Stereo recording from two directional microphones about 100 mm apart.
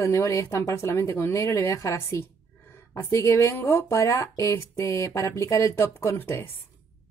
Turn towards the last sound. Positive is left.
turn(degrees=25)  # may be behind; listen again after turning